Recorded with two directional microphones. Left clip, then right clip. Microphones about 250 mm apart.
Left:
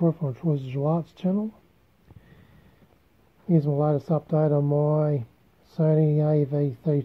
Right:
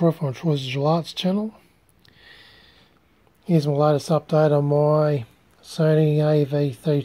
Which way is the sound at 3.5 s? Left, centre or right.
Centre.